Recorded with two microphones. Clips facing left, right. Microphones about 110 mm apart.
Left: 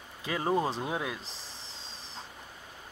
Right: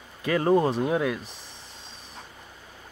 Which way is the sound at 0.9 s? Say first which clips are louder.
Right 8 dB; 20° left (ahead or behind).